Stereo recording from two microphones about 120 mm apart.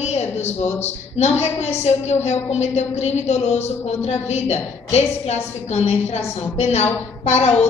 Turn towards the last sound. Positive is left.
turn(degrees=65)  # may be behind; listen again after turning